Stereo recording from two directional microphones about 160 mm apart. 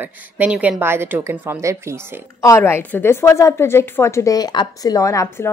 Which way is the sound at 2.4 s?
20° left (ahead or behind).